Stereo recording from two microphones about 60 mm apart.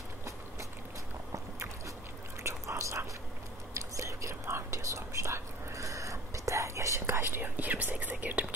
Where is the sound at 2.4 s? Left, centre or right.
Right.